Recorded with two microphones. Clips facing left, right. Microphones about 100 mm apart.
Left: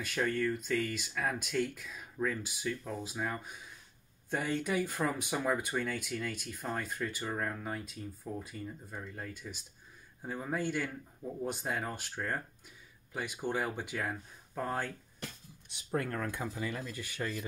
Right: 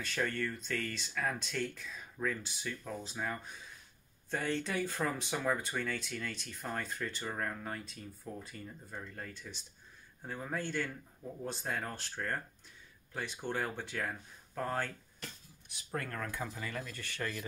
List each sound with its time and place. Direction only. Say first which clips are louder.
0.0 s speech: left 3 dB; 10° left (ahead or behind)